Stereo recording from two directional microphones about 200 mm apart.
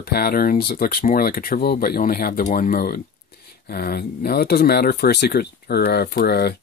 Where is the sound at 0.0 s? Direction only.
50° left (ahead or behind).